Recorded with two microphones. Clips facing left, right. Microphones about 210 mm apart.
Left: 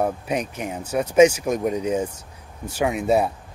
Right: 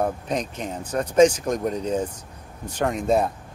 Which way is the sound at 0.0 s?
10° left (ahead or behind).